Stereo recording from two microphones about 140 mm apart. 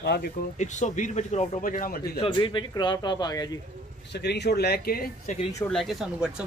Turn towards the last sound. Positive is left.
turn(degrees=-5)  # may be behind; listen again after turning